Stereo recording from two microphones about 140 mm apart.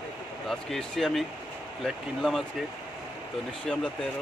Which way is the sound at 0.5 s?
Centre (ahead or behind).